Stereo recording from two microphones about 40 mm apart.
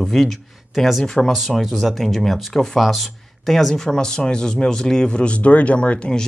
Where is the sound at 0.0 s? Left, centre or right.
Centre.